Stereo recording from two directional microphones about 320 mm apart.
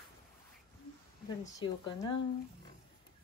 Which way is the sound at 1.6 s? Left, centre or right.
Centre.